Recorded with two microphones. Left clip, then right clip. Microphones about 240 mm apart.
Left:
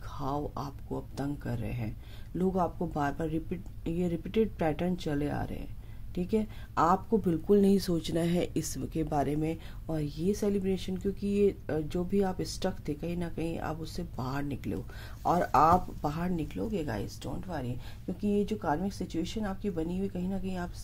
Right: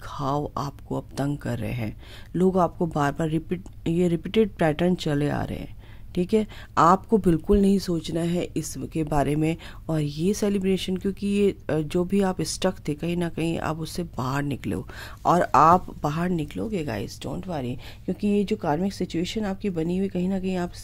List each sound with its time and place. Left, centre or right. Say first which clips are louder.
0.1 s speech: right 8 dB; right